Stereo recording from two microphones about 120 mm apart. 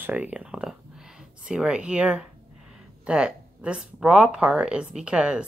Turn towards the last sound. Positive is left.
turn(degrees=-10)  # may be behind; listen again after turning